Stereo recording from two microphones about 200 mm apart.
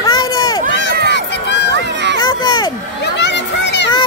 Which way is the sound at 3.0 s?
60° left (ahead or behind).